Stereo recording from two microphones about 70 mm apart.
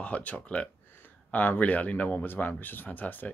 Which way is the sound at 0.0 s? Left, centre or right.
Left.